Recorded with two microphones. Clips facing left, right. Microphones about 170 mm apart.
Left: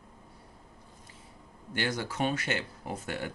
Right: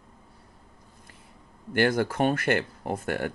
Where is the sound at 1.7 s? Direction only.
55° right (ahead or behind).